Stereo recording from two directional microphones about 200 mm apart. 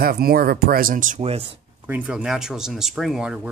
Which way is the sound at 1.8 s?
10° right (ahead or behind).